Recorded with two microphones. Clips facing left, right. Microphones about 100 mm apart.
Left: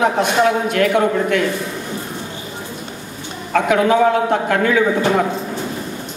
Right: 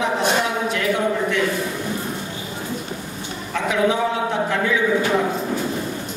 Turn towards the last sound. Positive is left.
turn(degrees=60)  # may be behind; listen again after turning